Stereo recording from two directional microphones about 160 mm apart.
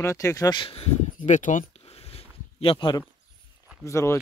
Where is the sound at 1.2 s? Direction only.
50° left (ahead or behind).